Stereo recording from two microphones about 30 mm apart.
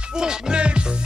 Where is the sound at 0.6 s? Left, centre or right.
Right.